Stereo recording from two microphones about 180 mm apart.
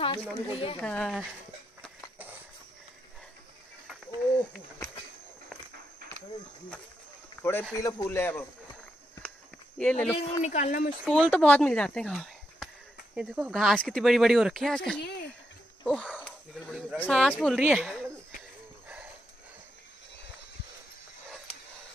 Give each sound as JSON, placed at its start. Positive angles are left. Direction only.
{"t": 0.0, "sound": "speech", "side_deg": 30}
{"t": 0.7, "sound": "a man's voice", "side_deg": 5}
{"t": 7.7, "sound": "a man's voice", "side_deg": 20}
{"t": 9.8, "sound": "a man's voice", "side_deg": 5}
{"t": 10.1, "sound": "speech", "side_deg": 40}
{"t": 11.2, "sound": "speech", "side_deg": 10}
{"t": 15.0, "sound": "a sound", "side_deg": 65}
{"t": 15.8, "sound": "speech", "side_deg": 5}